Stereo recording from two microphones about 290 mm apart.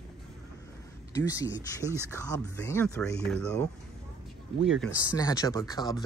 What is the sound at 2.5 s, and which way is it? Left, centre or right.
Speech, centre.